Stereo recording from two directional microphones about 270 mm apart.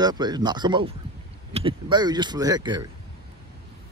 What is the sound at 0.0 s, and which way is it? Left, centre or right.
Speech, centre.